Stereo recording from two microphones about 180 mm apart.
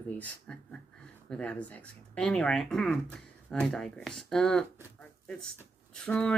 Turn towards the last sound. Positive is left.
turn(degrees=5)  # may be behind; listen again after turning